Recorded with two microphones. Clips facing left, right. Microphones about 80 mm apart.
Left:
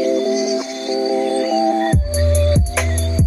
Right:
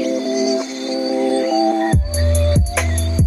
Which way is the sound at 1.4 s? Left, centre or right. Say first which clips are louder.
Even; centre.